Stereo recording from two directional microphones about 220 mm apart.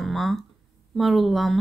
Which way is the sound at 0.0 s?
Centre (ahead or behind).